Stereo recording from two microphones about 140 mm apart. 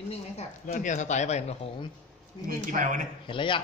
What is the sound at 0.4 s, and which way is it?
Speech, 55° left (ahead or behind).